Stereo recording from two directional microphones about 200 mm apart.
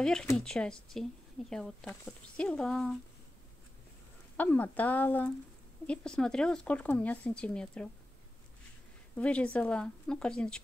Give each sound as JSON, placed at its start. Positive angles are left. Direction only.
{"t": 0.0, "sound": "speech", "side_deg": 5}
{"t": 4.4, "sound": "speech", "side_deg": 10}
{"t": 9.1, "sound": "speech", "side_deg": 5}